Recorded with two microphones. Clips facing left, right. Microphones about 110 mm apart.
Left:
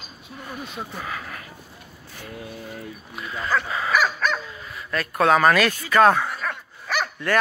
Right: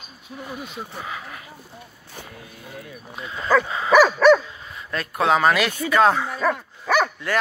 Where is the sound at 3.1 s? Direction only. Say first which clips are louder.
Right 5 dB; 25° right (ahead or behind).